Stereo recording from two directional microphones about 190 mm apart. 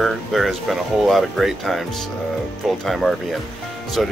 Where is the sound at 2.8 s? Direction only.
Centre (ahead or behind).